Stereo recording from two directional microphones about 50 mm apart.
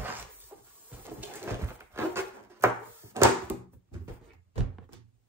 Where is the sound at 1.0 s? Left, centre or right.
Right.